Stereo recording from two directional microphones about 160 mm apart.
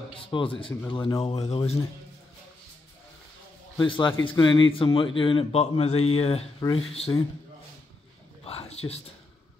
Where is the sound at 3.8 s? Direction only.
30° left (ahead or behind).